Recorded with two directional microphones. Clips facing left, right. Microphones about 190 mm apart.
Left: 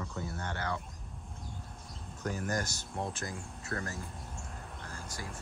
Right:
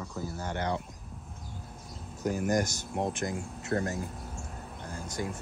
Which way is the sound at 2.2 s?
10° right (ahead or behind).